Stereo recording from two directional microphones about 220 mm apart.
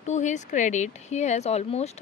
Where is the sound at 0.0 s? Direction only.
35° left (ahead or behind).